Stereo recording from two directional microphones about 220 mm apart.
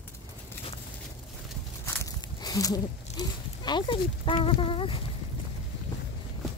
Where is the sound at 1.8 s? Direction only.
15° left (ahead or behind).